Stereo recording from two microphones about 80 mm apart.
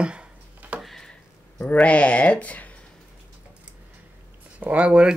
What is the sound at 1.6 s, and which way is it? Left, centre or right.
Speech, centre.